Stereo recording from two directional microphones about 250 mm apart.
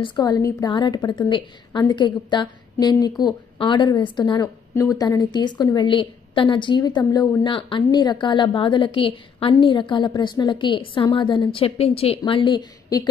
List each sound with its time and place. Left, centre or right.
0.0 s a woman's voice: centre